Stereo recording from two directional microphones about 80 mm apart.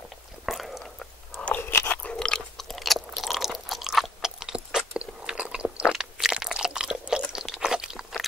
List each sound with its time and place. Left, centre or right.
0.5 s biting: centre
1.4 s crunch: left
2.0 s chewing: centre